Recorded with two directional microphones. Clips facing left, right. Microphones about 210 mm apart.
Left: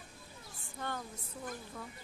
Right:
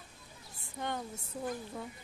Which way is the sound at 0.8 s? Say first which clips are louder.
Right 3 dB; 20° right (ahead or behind).